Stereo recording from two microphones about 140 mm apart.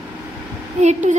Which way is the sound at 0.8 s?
55° right (ahead or behind).